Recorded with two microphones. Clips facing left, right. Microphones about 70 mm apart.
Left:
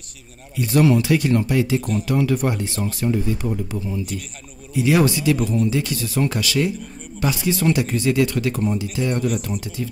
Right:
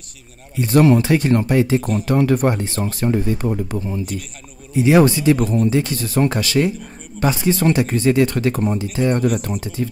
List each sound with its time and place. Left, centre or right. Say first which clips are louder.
0.6 s speech: right 3 dB; right
4.7 s speech: right 4 dB; right